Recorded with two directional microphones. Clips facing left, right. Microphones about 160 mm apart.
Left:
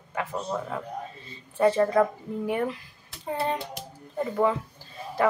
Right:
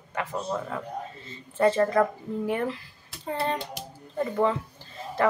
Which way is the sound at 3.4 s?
Centre (ahead or behind).